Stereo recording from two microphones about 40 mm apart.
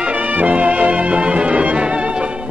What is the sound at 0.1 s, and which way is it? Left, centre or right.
Music, right.